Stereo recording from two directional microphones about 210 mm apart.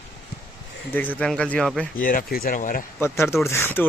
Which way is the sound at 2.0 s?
40° left (ahead or behind).